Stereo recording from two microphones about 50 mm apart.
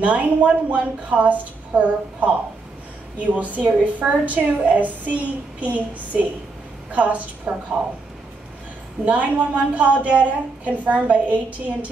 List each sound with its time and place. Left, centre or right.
0.0 s a woman's voice: right
9.0 s a woman's voice: right